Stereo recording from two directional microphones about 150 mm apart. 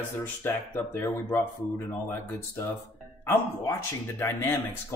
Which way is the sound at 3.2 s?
15° left (ahead or behind).